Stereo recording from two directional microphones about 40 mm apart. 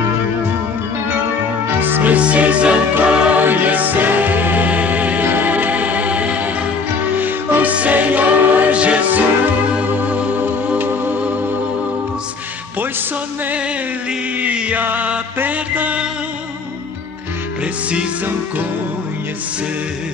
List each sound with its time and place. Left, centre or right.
1.8 s music: right
2.1 s music: right
3.3 s music: right
5.2 s choir: right
7.2 s music: right
7.9 s choir: right
8.7 s music: right
10.8 s music: right
14.4 s music: right